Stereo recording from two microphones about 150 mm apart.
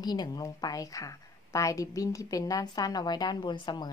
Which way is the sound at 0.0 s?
25° left (ahead or behind).